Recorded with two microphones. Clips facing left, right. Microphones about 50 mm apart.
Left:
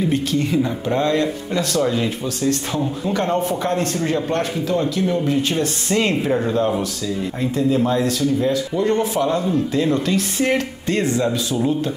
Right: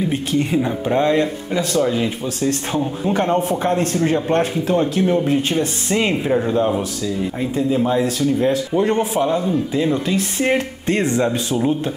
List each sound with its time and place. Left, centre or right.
0.3 s speech: right
5.5 s speech: centre; by 8.9 s right
8.9 s speech: centre
10.9 s speech: right